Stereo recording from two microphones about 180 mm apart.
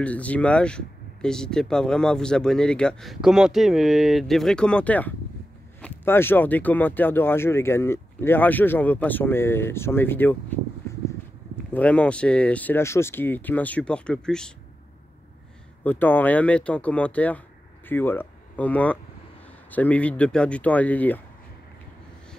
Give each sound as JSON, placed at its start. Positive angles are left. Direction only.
{"t": 0.0, "sound": "speech", "side_deg": 10}
{"t": 11.7, "sound": "speech", "side_deg": 5}
{"t": 15.8, "sound": "speech", "side_deg": 10}